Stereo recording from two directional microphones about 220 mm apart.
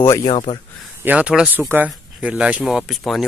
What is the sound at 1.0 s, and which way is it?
Speech, 5° right (ahead or behind).